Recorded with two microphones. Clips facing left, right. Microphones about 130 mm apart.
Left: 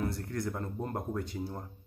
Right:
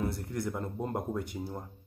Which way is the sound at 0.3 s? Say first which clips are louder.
Right 1 dB; 15° right (ahead or behind).